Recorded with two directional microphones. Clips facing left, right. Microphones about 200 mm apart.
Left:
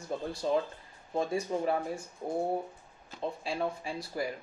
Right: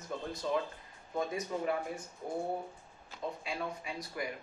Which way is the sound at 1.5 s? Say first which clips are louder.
Left 2 dB; 25° left (ahead or behind).